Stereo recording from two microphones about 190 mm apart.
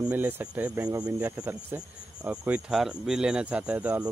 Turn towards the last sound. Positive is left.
turn(degrees=-5)  # may be behind; listen again after turning